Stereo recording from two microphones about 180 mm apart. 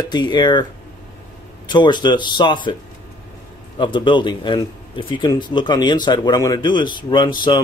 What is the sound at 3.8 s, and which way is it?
A man's voice, 25° left (ahead or behind).